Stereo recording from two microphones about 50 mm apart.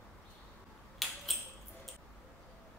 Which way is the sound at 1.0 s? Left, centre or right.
Centre.